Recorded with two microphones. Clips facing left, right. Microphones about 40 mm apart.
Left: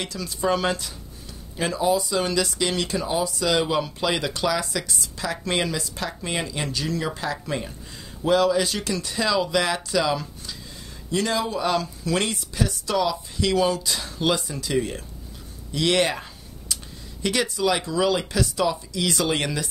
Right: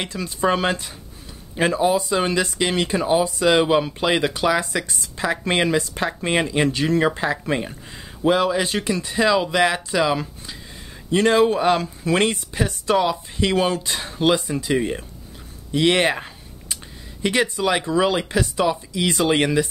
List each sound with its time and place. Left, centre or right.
0.0 s speech: right
4.6 s speech: right
11.1 s speech: right
15.7 s a sound: right
17.2 s speech: right